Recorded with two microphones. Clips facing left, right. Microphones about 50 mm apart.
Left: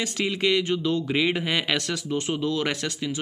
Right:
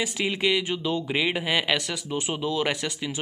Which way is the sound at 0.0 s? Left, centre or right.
Centre.